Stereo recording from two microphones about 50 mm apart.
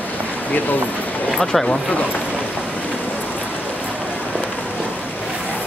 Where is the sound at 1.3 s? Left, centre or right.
Centre.